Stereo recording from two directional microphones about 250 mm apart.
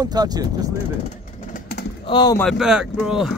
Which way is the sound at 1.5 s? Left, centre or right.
Left.